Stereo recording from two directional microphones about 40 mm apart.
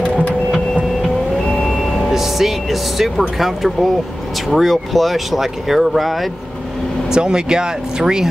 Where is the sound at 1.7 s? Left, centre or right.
Centre.